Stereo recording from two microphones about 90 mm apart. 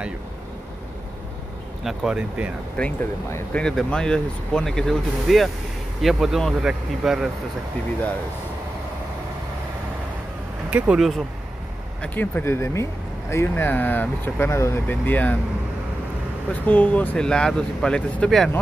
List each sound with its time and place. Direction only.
1.9 s speech: 10° right (ahead or behind)
2.8 s speech: 10° left (ahead or behind); by 7.2 s 5° right (ahead or behind)
10.7 s speech: 15° right (ahead or behind)
11.0 s speech: centre (ahead or behind)
12.0 s speech: 20° left (ahead or behind)
16.5 s speech: 20° left (ahead or behind)